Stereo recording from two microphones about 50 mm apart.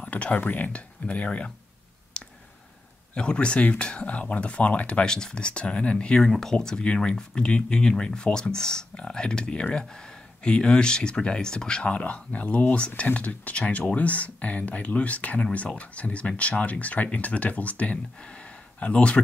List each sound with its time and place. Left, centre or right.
0.0 s speech: left
2.1 s clicking: left
3.2 s speech: left